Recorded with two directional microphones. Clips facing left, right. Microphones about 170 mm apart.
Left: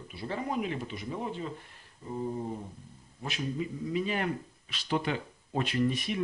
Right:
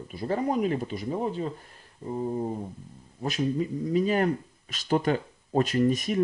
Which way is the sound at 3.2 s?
40° right (ahead or behind).